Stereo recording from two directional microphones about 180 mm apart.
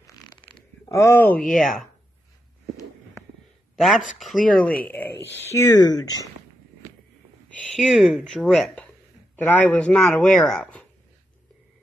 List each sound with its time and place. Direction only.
0.0 s a sound: 20° left (ahead or behind)
0.8 s speech: 15° left (ahead or behind); by 1.9 s centre (ahead or behind)
4.2 s speech: centre (ahead or behind)
5.5 s speech: 20° left (ahead or behind)
7.4 s speech: 5° left (ahead or behind)